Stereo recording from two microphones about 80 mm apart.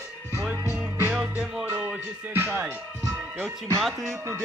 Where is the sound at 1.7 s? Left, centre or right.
Right.